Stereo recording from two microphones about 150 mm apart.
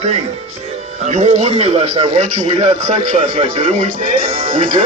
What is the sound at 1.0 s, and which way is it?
A man's voice, 50° right (ahead or behind).